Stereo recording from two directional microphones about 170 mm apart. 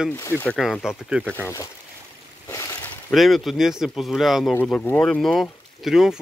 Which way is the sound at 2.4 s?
15° left (ahead or behind).